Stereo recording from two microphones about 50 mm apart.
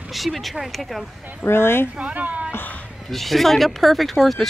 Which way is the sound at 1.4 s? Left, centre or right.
Left.